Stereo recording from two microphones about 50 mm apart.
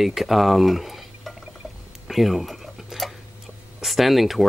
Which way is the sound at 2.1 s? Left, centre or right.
Centre.